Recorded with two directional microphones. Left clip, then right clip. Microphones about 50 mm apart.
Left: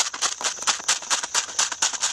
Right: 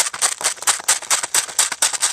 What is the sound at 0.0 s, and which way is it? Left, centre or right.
Music, right.